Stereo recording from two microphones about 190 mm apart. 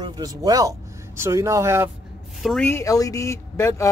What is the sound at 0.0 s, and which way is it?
Speech, 20° right (ahead or behind).